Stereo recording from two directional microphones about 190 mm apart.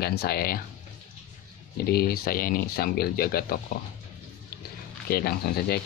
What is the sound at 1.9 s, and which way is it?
Speech, 55° left (ahead or behind).